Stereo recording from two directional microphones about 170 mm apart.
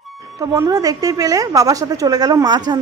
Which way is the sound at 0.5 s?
20° right (ahead or behind).